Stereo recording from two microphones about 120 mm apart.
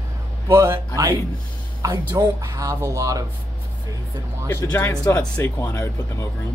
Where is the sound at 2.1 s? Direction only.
25° right (ahead or behind).